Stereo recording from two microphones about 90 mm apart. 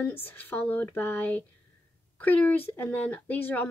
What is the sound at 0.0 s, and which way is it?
A woman's voice, 20° left (ahead or behind).